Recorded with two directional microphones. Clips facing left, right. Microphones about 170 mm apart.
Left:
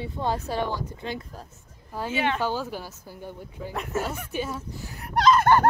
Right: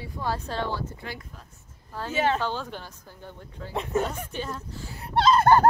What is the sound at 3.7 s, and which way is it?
Child singing, 25° right (ahead or behind).